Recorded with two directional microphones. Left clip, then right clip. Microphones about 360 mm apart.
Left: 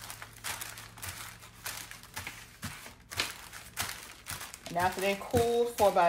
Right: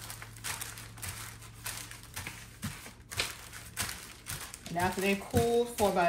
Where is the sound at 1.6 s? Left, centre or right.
Centre.